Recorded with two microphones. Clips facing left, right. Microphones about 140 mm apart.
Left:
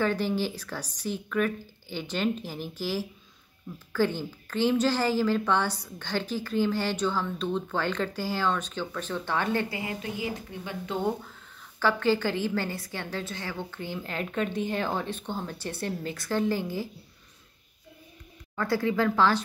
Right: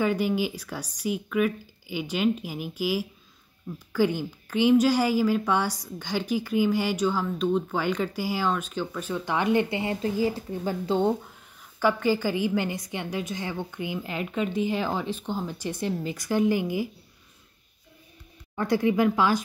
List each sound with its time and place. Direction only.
0.0 s a woman's voice: 10° right (ahead or behind); by 11.0 s 35° right (ahead or behind)
11.8 s a woman's voice: 10° right (ahead or behind)
18.6 s a woman's voice: 20° right (ahead or behind)